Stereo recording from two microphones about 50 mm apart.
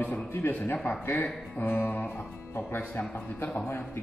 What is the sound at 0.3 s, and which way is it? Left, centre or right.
Speech, left.